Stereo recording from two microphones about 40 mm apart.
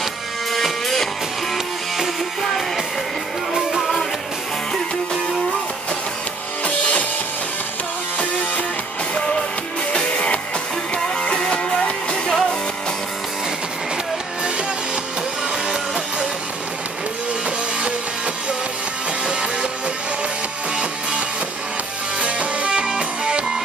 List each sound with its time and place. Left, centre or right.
0.5 s music: centre
6.6 s music: left
9.1 s music: left
12.3 s music: centre
22.2 s music: right